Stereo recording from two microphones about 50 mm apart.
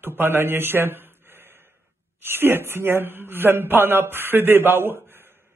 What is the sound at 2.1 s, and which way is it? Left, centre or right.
A woman's voice, right.